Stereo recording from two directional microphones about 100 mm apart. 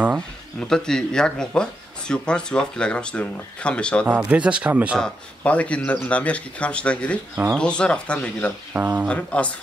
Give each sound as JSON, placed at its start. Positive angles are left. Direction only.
{"t": 0.1, "sound": "speech", "side_deg": 5}
{"t": 4.2, "sound": "speech", "side_deg": -10}
{"t": 4.9, "sound": "speech", "side_deg": 10}
{"t": 8.7, "sound": "speech", "side_deg": -20}
{"t": 9.0, "sound": "speech", "side_deg": 10}